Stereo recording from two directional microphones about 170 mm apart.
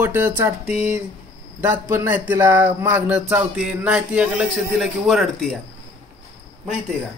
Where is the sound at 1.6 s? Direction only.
15° right (ahead or behind); by 5.6 s centre (ahead or behind).